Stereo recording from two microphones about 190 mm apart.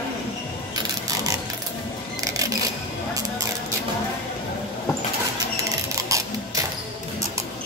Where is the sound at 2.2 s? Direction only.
15° right (ahead or behind).